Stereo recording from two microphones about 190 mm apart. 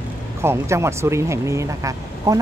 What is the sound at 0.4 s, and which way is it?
Speech, 15° right (ahead or behind).